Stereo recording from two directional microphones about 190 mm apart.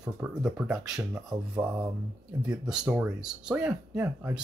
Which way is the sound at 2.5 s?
5° right (ahead or behind).